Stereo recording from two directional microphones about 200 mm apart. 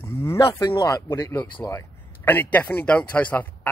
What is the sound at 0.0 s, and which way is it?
Speech, 15° left (ahead or behind).